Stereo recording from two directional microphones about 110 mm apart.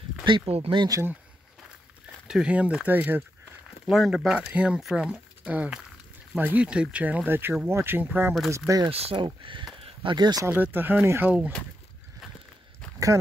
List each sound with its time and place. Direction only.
0.5 s speech: 65° right (ahead or behind)
0.7 s speech: 35° right (ahead or behind)
2.2 s speech: 10° right (ahead or behind)
3.8 s speech: 5° right (ahead or behind)
8.5 s speech: 30° right (ahead or behind)
8.9 s speech: 60° right (ahead or behind); by 10.4 s 40° right (ahead or behind)
10.4 s speech: 20° right (ahead or behind)